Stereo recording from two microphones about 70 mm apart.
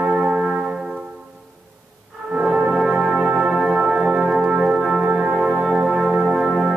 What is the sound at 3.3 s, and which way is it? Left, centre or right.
Music, centre.